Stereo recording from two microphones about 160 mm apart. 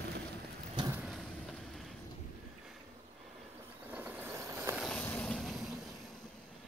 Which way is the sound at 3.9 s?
10° right (ahead or behind).